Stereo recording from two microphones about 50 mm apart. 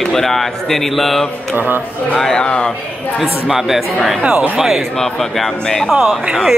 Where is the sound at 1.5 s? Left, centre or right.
Right.